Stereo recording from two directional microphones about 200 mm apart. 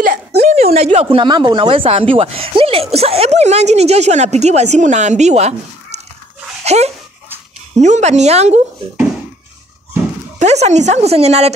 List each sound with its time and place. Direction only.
0.4 s speech: 35° right (ahead or behind)
6.6 s a sound: 35° right (ahead or behind)
7.7 s speech: 35° right (ahead or behind)
10.4 s speech: 35° right (ahead or behind)